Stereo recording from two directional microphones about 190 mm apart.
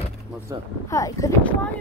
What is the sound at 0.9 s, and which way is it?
Speech, 15° left (ahead or behind).